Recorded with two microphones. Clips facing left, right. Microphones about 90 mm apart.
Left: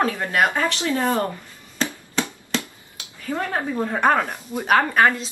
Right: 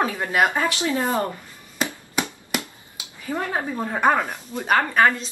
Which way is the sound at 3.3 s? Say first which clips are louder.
Left 1 dB; 15° right (ahead or behind).